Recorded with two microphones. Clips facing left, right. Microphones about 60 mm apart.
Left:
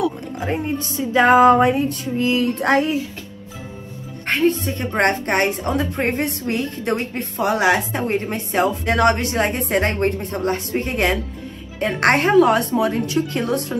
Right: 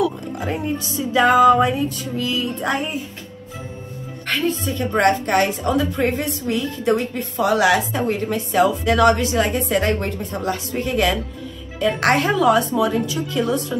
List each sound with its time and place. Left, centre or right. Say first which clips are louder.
0.4 s speech: left 1 dB; left
2.1 s a sound: left 5 dB; left
4.3 s a woman's voice: left 3 dB; left
7.5 s a woman's voice: right 1 dB; left
11.8 s a woman's voice: left 1 dB; left